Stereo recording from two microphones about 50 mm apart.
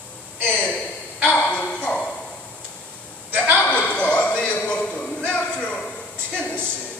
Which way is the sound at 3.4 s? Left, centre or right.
Left.